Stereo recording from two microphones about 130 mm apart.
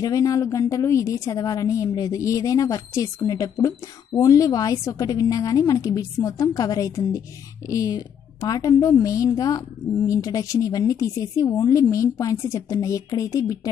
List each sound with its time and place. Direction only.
0.0 s a woman's voice: 25° left (ahead or behind)